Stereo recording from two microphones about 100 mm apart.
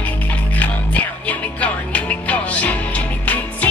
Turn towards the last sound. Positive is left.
turn(degrees=15)  # may be behind; listen again after turning